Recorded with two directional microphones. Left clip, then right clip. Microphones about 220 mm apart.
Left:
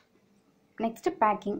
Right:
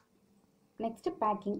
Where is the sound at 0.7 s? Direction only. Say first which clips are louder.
Left 7 dB; 15° left (ahead or behind).